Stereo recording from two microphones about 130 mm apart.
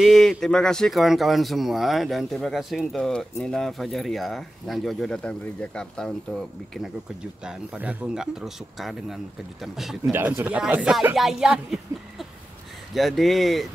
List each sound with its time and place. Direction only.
0.0 s speech: centre (ahead or behind)
7.4 s speech: 10° right (ahead or behind)
10.1 s speech: 15° right (ahead or behind); by 13.7 s centre (ahead or behind)